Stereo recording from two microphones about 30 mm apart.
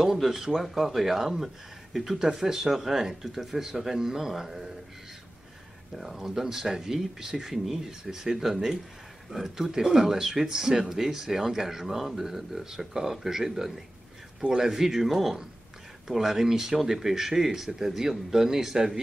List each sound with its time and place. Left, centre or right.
0.0 s speech: centre
5.9 s speech: centre
7.5 s speech: centre
7.8 s speech: centre
15.0 s speech: centre